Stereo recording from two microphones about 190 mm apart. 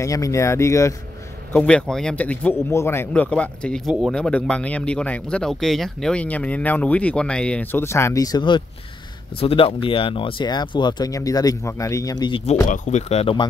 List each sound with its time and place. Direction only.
0.0 s speech: 15° left (ahead or behind)
12.6 s speech: 40° left (ahead or behind)